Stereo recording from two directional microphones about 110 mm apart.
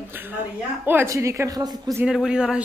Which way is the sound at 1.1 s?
25° right (ahead or behind).